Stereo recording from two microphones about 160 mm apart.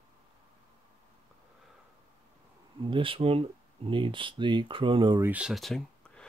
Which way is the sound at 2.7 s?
30° right (ahead or behind).